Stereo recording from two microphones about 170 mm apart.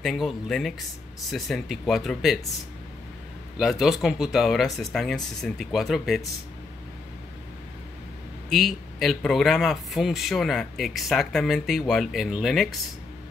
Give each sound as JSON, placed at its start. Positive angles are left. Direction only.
{"t": 0.0, "sound": "speech", "side_deg": 0}
{"t": 3.5, "sound": "speech", "side_deg": 0}
{"t": 8.5, "sound": "speech", "side_deg": 0}